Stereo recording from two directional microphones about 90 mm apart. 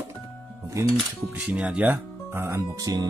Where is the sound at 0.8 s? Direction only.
35° right (ahead or behind).